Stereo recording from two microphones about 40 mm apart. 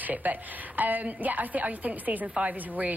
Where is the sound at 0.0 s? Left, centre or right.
Right.